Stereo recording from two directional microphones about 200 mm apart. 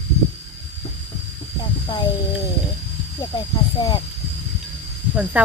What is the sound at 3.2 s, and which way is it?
Speech, 20° left (ahead or behind).